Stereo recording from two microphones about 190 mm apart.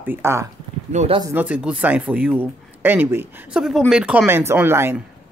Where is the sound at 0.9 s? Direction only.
35° right (ahead or behind).